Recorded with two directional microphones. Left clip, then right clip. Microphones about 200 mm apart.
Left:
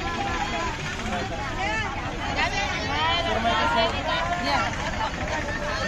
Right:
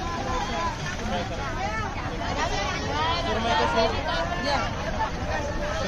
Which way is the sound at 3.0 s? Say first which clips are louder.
Left 3 dB; 60° right (ahead or behind).